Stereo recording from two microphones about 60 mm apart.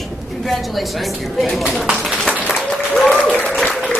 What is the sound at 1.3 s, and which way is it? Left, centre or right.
Speech, centre.